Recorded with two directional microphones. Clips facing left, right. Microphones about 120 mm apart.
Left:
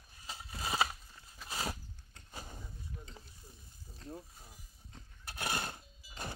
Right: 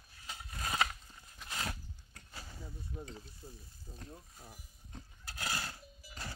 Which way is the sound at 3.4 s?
40° right (ahead or behind).